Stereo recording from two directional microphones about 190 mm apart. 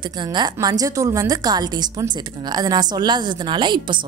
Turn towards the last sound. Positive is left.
turn(degrees=-25)  # may be behind; listen again after turning